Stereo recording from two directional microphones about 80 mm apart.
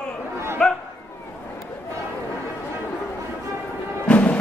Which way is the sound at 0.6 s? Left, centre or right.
Centre.